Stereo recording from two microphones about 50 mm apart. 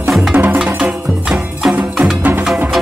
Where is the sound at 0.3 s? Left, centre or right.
Right.